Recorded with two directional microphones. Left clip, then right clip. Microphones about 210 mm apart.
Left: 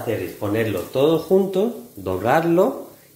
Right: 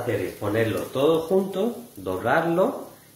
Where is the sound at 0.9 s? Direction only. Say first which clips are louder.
Left 4 dB; 40° left (ahead or behind).